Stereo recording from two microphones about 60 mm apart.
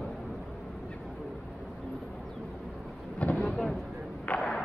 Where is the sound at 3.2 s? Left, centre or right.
Left.